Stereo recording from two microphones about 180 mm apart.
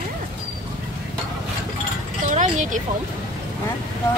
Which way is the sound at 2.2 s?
45° right (ahead or behind).